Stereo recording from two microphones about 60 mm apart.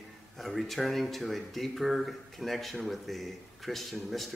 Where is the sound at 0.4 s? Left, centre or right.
Centre.